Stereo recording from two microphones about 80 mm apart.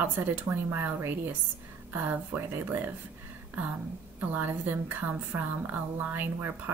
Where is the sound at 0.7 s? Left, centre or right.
Right.